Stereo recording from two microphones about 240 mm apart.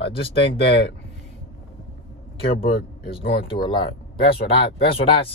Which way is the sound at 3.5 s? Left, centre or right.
Centre.